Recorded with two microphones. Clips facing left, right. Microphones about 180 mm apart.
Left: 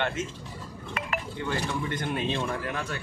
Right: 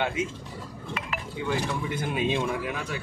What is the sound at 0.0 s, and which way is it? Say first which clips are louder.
Speech: right 2 dB; 10° right (ahead or behind).